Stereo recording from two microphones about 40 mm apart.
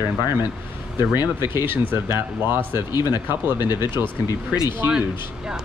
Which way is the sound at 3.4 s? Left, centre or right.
Right.